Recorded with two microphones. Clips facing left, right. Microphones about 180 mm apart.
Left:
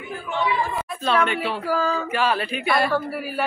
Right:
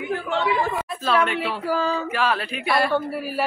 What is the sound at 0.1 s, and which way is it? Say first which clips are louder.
Speech: right 1 dB; 75° right (ahead or behind).